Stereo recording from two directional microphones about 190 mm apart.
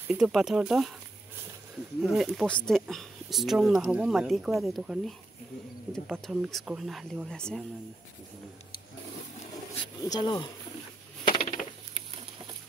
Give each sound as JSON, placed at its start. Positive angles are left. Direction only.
{"t": 0.1, "sound": "speech", "side_deg": 0}
{"t": 2.0, "sound": "speech", "side_deg": 0}
{"t": 10.0, "sound": "speech", "side_deg": 20}
{"t": 11.2, "sound": "a sound", "side_deg": 25}